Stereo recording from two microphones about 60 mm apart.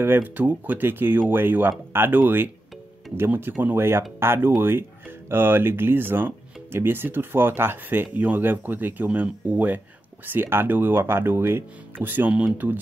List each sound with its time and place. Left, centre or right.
0.2 s speech: right